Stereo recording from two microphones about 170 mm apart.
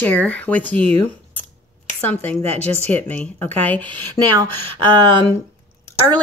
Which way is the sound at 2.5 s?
40° right (ahead or behind).